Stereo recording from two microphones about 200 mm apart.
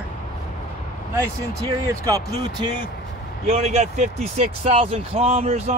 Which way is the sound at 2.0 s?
15° right (ahead or behind).